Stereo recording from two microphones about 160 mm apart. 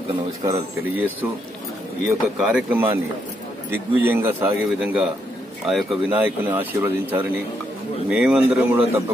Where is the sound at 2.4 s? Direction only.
10° right (ahead or behind).